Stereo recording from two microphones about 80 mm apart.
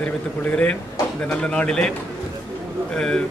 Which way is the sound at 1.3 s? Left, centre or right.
Centre.